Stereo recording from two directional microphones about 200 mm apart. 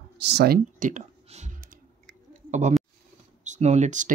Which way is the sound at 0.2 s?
55° right (ahead or behind).